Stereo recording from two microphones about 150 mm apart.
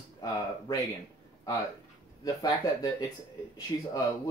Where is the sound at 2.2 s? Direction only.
25° left (ahead or behind).